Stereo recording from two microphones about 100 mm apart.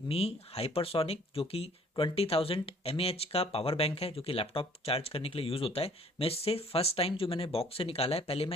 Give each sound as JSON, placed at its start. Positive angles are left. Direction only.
{"t": 0.1, "sound": "speech", "side_deg": 90}